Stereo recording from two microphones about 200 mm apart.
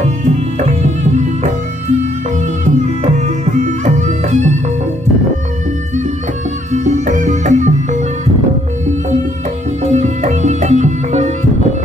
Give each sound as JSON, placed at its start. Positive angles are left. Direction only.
{"t": 0.0, "sound": "music", "side_deg": -35}
{"t": 6.7, "sound": "music", "side_deg": -40}
{"t": 9.8, "sound": "music", "side_deg": -35}